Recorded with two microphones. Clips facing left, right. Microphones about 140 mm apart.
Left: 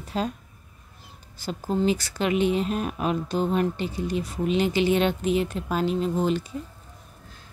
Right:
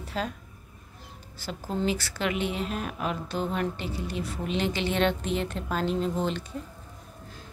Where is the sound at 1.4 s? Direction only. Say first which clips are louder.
Left 5 dB; 15° left (ahead or behind).